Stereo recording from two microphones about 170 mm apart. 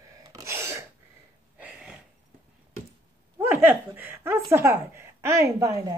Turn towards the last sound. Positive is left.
turn(degrees=-20)  # may be behind; listen again after turning